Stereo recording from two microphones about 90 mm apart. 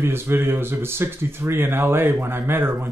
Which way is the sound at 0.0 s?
25° right (ahead or behind).